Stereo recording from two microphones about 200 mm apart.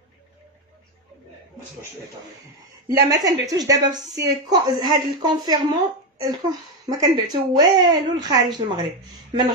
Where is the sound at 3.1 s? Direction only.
15° right (ahead or behind).